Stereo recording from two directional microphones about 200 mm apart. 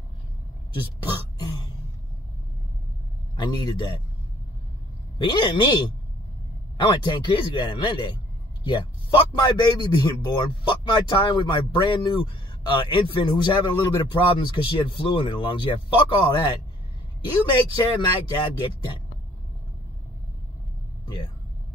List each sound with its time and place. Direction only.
1.1 s throat clearing: 20° left (ahead or behind)
3.3 s a man's voice: 20° left (ahead or behind)
5.2 s a man's voice: 25° left (ahead or behind)
6.8 s a man's voice: 25° left (ahead or behind)
17.5 s a man's voice: 25° left (ahead or behind)